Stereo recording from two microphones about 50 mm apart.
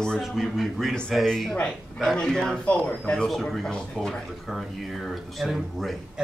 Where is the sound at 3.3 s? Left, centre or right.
Centre.